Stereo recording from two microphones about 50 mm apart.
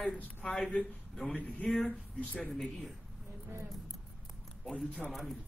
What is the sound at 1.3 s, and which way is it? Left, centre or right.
Speech, left.